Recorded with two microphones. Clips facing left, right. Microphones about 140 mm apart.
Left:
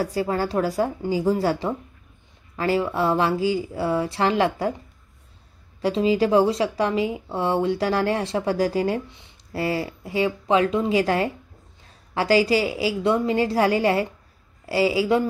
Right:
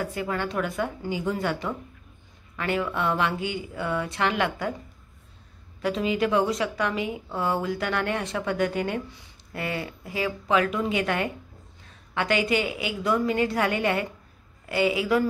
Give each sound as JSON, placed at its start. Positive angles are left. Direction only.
{"t": 0.0, "sound": "a woman's voice", "side_deg": 35}
{"t": 5.8, "sound": "a woman's voice", "side_deg": 30}